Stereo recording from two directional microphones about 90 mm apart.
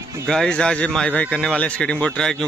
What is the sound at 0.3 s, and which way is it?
Speech, 10° left (ahead or behind).